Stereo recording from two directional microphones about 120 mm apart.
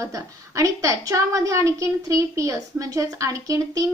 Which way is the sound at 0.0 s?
25° right (ahead or behind).